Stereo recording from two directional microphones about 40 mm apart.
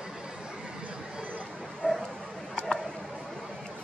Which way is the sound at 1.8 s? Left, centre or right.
Right.